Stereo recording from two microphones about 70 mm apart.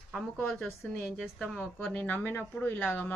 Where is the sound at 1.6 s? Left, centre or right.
Centre.